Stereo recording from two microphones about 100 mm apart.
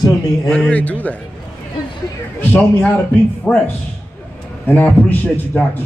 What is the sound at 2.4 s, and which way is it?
A man's voice, 15° left (ahead or behind).